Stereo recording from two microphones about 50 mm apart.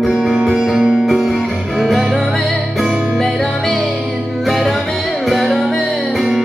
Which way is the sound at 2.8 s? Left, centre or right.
Centre.